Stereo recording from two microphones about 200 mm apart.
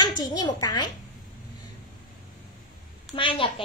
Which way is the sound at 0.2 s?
20° left (ahead or behind).